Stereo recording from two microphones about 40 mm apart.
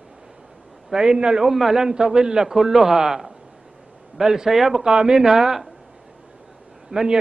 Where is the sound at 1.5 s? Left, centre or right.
Centre.